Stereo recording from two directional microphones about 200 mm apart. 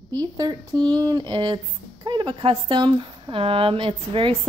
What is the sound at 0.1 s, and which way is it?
Speech, 20° right (ahead or behind).